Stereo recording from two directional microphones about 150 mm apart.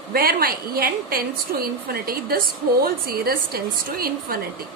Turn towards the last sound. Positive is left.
turn(degrees=-75)  # may be behind; listen again after turning